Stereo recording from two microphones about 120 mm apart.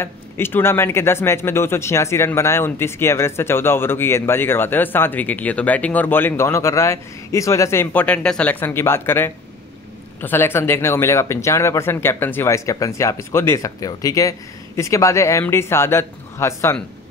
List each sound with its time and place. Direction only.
0.0 s speech: 20° left (ahead or behind)